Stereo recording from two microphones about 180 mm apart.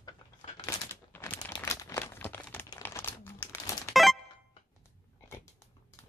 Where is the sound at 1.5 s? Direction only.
20° left (ahead or behind).